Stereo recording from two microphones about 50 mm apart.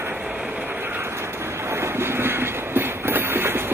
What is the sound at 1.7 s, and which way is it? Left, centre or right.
Train, right.